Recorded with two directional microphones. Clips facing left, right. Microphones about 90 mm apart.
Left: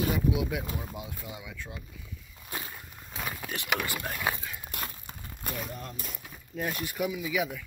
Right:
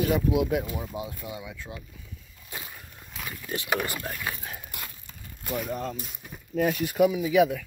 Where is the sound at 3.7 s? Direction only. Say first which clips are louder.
Right 2 dB; 35° right (ahead or behind).